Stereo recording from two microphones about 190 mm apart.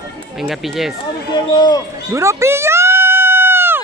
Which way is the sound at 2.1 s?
15° right (ahead or behind).